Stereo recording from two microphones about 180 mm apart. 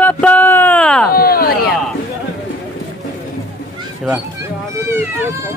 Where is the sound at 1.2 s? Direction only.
55° left (ahead or behind).